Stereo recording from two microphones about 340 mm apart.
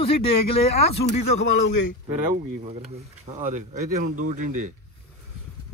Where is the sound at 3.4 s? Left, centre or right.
Right.